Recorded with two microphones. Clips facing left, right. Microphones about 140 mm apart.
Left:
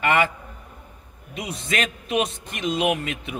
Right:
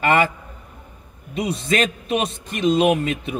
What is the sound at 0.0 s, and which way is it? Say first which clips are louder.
Speech: right 3 dB; 35° right (ahead or behind).